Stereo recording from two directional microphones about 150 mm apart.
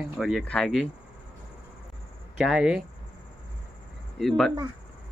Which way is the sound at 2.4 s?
5° right (ahead or behind).